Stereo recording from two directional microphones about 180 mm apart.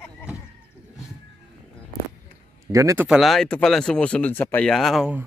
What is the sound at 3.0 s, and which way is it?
Speech, centre (ahead or behind).